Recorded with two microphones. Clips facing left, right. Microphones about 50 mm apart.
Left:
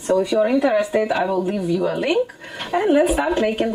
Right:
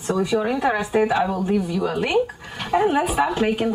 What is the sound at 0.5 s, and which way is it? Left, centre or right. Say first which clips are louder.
Speech: left 4 dB; right.